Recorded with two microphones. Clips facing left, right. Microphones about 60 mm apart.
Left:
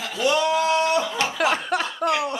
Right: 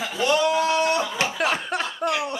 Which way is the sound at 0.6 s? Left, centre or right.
Centre.